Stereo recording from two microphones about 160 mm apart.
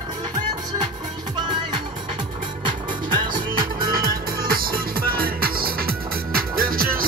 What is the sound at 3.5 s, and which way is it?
Music, 65° right (ahead or behind).